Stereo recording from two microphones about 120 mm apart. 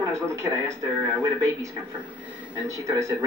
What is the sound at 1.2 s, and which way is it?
A man's voice, 25° right (ahead or behind).